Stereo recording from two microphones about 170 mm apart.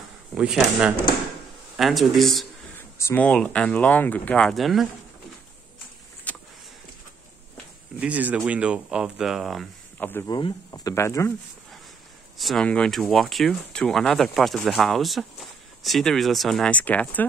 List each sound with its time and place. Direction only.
0.3 s speech: 5° right (ahead or behind)
3.0 s speech: 10° left (ahead or behind)
6.3 s vehicle: 10° left (ahead or behind)
8.0 s speech: 10° right (ahead or behind)
10.0 s speech: 10° left (ahead or behind)
10.3 s speech: 25° left (ahead or behind)
12.4 s speech: centre (ahead or behind)